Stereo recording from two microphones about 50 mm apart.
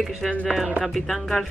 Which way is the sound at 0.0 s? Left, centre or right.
Centre.